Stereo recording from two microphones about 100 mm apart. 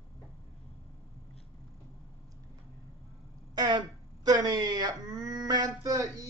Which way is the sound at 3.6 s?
40° right (ahead or behind).